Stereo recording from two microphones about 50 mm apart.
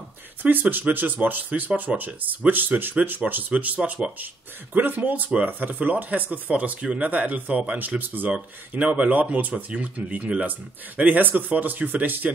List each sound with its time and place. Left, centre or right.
0.4 s speech: right